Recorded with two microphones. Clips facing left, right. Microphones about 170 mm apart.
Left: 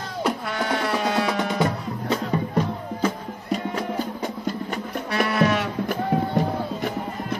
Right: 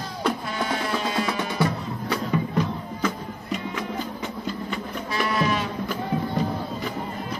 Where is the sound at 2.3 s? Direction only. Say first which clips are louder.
Left 1 dB; 35° left (ahead or behind).